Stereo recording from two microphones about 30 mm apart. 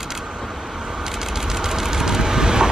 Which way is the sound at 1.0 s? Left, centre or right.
Centre.